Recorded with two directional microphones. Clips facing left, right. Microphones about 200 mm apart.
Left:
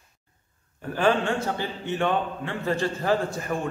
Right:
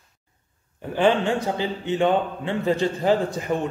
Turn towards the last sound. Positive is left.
turn(degrees=-20)  # may be behind; listen again after turning